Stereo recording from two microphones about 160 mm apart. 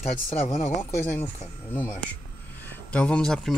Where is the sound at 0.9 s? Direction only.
15° left (ahead or behind).